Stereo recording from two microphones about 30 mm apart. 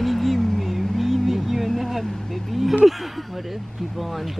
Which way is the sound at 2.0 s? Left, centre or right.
Centre.